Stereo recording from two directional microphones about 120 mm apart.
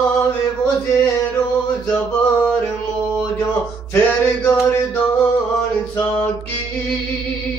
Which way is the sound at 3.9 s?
20° left (ahead or behind).